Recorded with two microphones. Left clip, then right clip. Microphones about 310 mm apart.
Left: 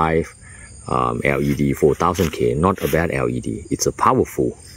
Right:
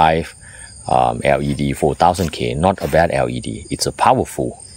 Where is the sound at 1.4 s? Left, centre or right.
Centre.